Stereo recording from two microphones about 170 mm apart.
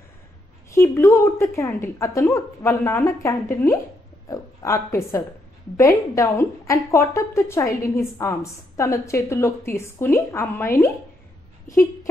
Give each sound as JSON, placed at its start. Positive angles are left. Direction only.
{"t": 0.7, "sound": "a woman's voice", "side_deg": 15}